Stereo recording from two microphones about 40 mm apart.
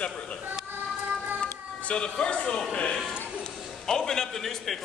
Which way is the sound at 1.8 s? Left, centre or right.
Left.